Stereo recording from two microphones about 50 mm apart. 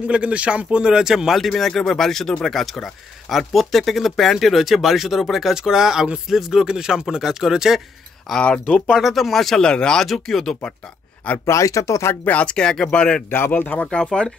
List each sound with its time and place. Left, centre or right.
0.0 s speech: right; by 1.5 s centre
1.5 s speech: centre
8.4 s speech: left
8.9 s speech: centre
9.7 s speech: centre
10.0 s speech: centre
11.3 s speech: left
12.3 s speech: left
12.5 s speech: centre
13.5 s speech: left
13.8 s speech: centre